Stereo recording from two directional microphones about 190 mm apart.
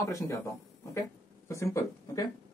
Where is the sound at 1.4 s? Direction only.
15° left (ahead or behind).